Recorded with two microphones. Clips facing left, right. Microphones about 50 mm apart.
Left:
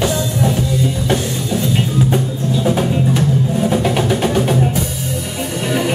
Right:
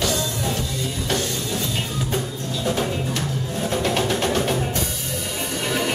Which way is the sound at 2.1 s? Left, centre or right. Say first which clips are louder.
Left 8 dB; centre.